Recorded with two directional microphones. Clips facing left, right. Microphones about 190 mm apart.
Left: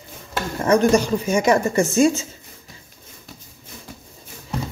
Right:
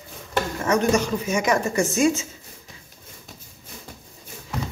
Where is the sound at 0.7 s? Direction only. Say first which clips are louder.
Left 5 dB; 30° left (ahead or behind).